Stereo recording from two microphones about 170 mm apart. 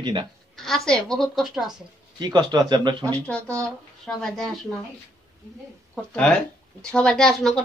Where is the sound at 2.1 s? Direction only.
25° right (ahead or behind).